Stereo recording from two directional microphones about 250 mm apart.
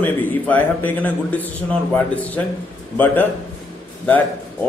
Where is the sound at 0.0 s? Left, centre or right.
Centre.